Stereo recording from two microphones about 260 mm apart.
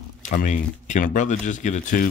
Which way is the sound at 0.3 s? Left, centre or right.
Left.